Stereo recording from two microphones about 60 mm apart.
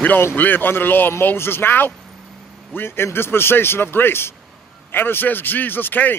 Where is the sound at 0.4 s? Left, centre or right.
Left.